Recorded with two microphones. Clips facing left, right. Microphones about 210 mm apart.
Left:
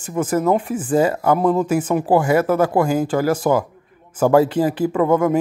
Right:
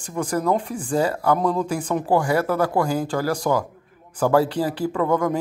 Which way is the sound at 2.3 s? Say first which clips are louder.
Left 4 dB; 20° left (ahead or behind).